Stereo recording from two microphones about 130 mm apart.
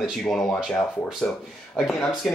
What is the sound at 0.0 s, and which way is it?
Speech, centre (ahead or behind).